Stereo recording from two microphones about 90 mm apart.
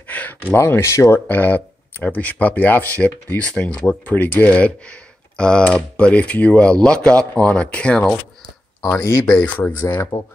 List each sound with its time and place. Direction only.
0.1 s a sound: 15° left (ahead or behind)
0.6 s speech: 30° left (ahead or behind)
1.2 s speech: 20° left (ahead or behind)
9.4 s speech: 15° left (ahead or behind)